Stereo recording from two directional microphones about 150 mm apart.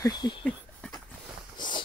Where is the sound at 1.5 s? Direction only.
30° left (ahead or behind).